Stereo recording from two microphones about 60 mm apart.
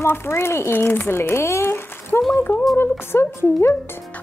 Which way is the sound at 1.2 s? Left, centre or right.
Left.